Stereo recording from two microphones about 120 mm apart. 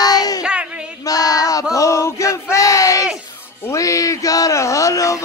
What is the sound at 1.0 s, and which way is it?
Child singing, 30° left (ahead or behind).